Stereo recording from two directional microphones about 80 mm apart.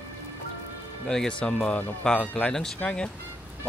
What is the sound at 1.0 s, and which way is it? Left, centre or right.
Speech, centre.